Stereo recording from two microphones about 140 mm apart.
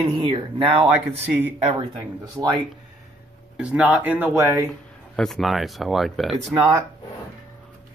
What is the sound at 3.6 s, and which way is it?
Speech, 10° right (ahead or behind).